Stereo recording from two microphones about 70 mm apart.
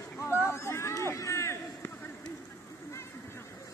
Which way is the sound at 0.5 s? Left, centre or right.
Left.